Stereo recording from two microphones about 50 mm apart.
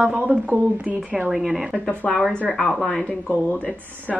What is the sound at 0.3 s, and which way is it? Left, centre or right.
Speech, right.